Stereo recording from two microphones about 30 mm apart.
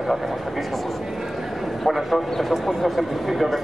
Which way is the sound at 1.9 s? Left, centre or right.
Centre.